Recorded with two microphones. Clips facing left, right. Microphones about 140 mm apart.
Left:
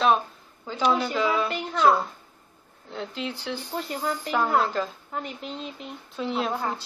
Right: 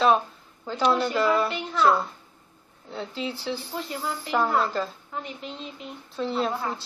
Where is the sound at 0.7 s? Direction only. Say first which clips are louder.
Right 1 dB; centre (ahead or behind).